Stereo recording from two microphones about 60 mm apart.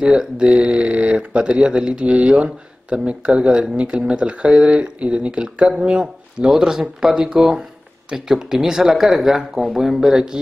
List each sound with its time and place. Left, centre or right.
0.0 s speech: centre